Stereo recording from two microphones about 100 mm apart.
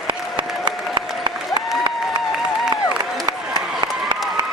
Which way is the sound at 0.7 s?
45° right (ahead or behind).